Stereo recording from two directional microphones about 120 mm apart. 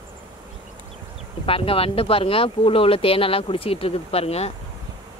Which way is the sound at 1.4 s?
50° left (ahead or behind).